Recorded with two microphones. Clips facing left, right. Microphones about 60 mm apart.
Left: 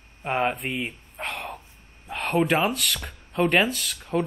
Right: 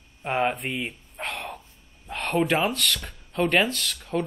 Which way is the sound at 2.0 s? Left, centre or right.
Centre.